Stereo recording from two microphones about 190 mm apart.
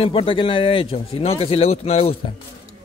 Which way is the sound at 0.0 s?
30° left (ahead or behind).